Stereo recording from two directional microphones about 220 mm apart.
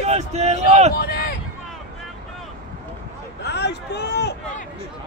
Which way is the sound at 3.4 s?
50° left (ahead or behind).